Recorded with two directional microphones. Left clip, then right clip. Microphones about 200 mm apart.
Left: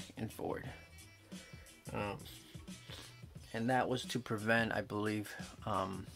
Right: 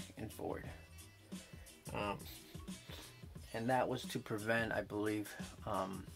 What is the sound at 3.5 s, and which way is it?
Speech, 40° left (ahead or behind).